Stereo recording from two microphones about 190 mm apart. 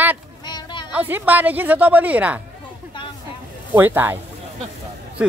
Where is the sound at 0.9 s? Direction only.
10° right (ahead or behind).